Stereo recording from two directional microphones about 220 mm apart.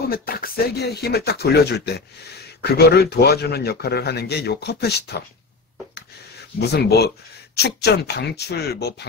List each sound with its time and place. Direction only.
0.1 s a man's voice: 45° left (ahead or behind)
6.6 s a man's voice: 45° left (ahead or behind)